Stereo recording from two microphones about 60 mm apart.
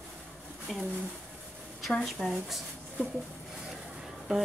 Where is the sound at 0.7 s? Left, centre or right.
Centre.